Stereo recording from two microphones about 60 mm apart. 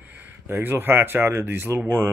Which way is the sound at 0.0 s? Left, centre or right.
Right.